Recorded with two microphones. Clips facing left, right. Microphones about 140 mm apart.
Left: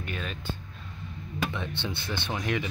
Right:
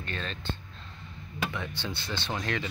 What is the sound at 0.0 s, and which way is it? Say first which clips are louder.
Speech: left 1 dB; 10° left (ahead or behind).